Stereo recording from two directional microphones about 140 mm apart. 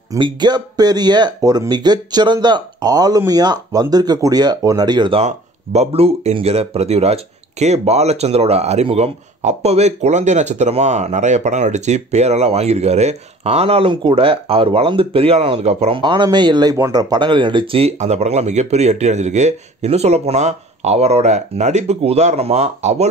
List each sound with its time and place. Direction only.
0.2 s speech: 30° right (ahead or behind)
5.2 s speech: 50° right (ahead or behind)